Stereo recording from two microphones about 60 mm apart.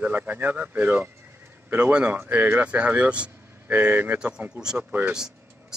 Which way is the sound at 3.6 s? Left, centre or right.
Right.